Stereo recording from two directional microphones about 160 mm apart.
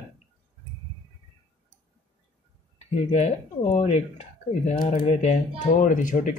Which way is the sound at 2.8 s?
45° left (ahead or behind).